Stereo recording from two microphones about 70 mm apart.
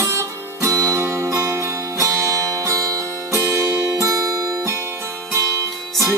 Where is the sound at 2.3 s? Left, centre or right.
Right.